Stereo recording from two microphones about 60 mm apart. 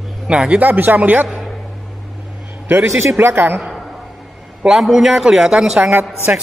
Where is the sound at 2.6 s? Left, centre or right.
Right.